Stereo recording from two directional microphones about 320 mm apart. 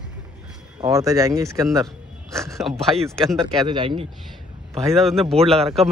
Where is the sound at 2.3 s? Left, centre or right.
Centre.